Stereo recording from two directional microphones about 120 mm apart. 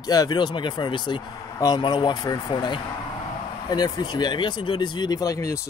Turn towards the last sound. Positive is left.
turn(degrees=25)  # may be behind; listen again after turning